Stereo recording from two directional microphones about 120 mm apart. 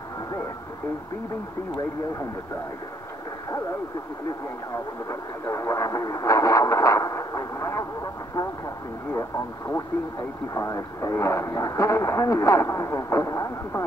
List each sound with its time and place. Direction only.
5.5 s speech: 25° left (ahead or behind)
10.5 s speech: 25° left (ahead or behind)